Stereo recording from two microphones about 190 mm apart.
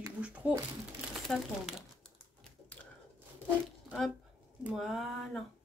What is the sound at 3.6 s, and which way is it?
Speech, centre (ahead or behind).